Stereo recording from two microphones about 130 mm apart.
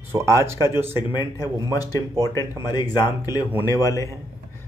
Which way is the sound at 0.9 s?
35° left (ahead or behind).